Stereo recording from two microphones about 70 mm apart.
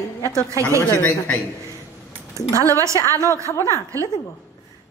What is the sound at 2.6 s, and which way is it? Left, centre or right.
Speech, right.